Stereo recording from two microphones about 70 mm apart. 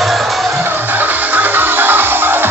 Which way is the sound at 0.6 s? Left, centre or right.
Right.